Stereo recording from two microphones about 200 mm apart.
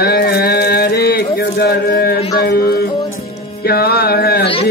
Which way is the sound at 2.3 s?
50° left (ahead or behind).